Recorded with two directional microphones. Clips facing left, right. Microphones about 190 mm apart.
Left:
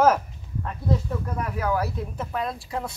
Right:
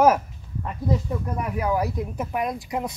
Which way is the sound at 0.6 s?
10° right (ahead or behind).